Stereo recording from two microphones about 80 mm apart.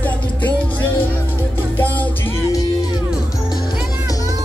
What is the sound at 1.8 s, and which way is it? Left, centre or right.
Music, left.